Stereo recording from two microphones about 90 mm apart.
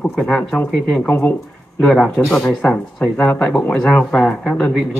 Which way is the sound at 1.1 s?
20° left (ahead or behind).